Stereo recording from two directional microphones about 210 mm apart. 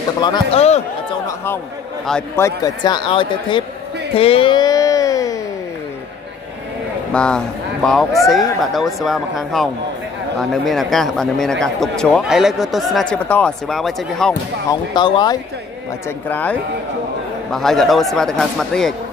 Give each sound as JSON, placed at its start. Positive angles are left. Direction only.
{"t": 0.2, "sound": "a man's voice", "side_deg": 25}
{"t": 1.2, "sound": "a man's voice", "side_deg": 10}
{"t": 4.1, "sound": "a sound", "side_deg": 25}
{"t": 7.1, "sound": "speech", "side_deg": 5}
{"t": 14.7, "sound": "a man's voice", "side_deg": 20}
{"t": 16.3, "sound": "speech", "side_deg": 10}